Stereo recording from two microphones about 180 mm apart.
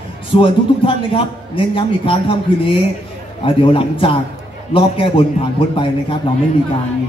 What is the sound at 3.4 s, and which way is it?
A man's voice, 30° left (ahead or behind).